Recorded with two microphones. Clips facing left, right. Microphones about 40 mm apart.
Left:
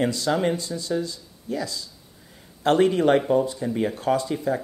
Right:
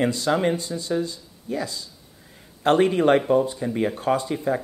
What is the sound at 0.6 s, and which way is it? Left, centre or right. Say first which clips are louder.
Speech: right 1 dB; right.